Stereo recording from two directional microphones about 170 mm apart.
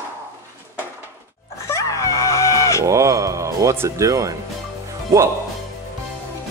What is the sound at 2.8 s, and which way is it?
Music, 20° right (ahead or behind).